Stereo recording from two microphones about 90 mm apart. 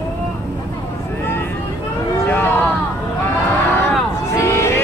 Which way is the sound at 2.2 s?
20° left (ahead or behind).